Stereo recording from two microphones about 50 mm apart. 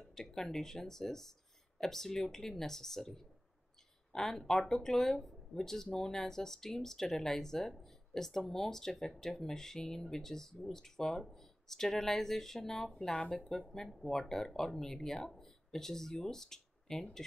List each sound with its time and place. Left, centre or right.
0.1 s speech: centre
13.1 s speech: left
14.0 s speech: centre